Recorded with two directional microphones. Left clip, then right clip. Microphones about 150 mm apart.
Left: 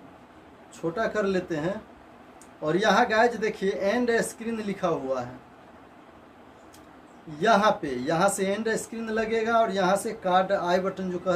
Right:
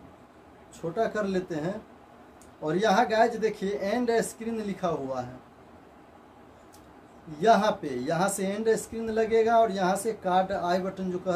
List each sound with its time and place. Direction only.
0.7 s speech: 15° left (ahead or behind)
7.3 s speech: 20° left (ahead or behind)